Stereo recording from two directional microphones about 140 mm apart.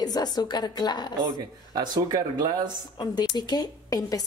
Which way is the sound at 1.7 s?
30° right (ahead or behind).